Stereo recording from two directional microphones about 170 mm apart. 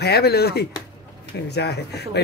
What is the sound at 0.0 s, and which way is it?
Speech, 70° left (ahead or behind).